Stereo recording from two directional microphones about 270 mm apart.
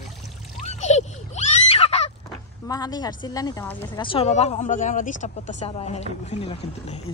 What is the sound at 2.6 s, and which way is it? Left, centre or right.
A woman's voice, centre.